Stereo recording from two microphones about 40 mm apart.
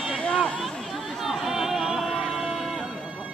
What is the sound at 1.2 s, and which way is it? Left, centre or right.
Music, centre.